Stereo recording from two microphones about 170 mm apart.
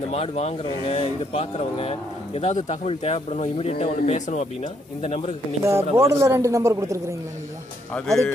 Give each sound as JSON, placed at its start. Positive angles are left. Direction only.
{"t": 0.1, "sound": "speech", "side_deg": 40}
{"t": 5.7, "sound": "a man's voice", "side_deg": -15}
{"t": 7.9, "sound": "speech", "side_deg": 5}